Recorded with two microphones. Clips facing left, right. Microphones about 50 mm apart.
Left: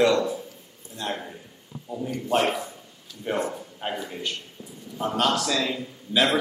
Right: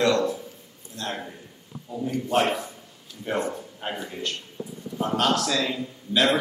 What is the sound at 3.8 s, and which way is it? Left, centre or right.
Speech, centre.